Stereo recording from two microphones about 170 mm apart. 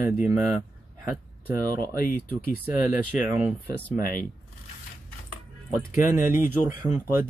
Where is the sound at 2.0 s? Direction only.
60° left (ahead or behind).